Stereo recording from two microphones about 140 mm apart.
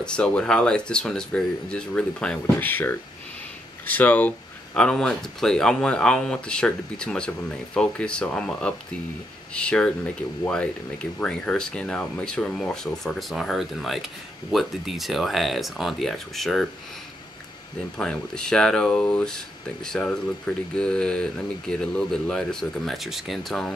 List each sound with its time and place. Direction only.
0.0 s speech: 5° left (ahead or behind)
17.9 s speech: 5° left (ahead or behind)